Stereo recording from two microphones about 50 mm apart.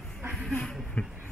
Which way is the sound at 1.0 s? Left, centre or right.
Left.